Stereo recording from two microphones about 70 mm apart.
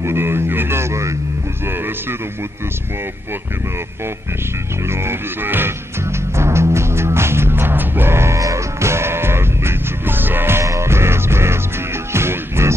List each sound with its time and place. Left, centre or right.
0.0 s speech: right
4.8 s speech: right
6.3 s music: right
8.4 s music: right
10.6 s music: right